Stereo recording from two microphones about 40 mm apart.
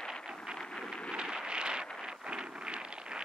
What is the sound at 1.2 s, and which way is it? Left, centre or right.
Wind noise, centre.